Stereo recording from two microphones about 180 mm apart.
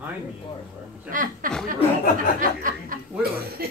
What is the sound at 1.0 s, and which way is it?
Speech, 50° right (ahead or behind).